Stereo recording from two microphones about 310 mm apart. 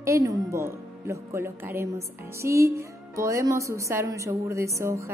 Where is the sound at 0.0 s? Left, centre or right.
Centre.